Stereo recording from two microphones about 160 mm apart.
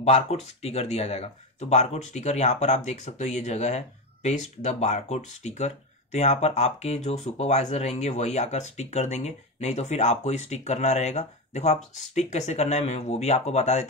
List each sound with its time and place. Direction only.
0.0 s speech: 40° left (ahead or behind)